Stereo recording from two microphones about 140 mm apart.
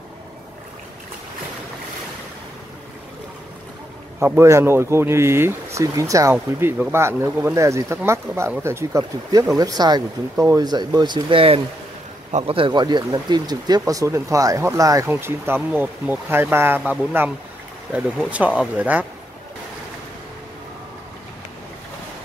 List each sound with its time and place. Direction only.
4.2 s speech: 20° right (ahead or behind)